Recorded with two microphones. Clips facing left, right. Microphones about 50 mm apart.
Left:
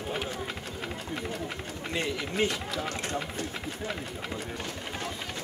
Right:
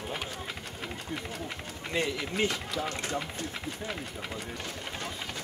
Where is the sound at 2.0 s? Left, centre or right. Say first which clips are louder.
Left 1 dB; centre.